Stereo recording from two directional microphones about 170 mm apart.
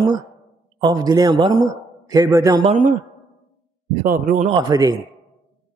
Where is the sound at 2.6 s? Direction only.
45° right (ahead or behind).